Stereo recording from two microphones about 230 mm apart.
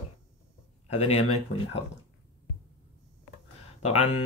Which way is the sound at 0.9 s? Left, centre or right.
Left.